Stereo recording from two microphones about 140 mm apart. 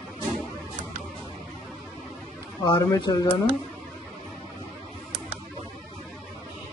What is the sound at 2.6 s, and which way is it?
Speech, 30° left (ahead or behind).